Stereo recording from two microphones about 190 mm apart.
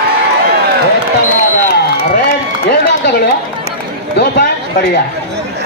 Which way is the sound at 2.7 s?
60° left (ahead or behind).